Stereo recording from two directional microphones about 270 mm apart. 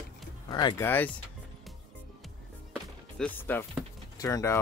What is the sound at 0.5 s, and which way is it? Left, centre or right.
Speech, centre.